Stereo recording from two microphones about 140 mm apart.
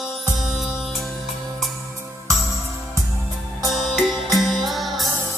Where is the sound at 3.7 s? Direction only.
Centre (ahead or behind).